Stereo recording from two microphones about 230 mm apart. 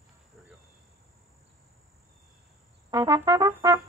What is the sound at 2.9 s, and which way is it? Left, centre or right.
Brass instrument, centre.